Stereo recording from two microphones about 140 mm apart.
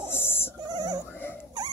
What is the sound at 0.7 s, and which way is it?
Opera, 25° right (ahead or behind).